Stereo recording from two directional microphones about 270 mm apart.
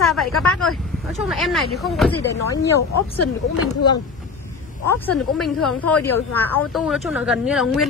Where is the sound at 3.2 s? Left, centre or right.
Left.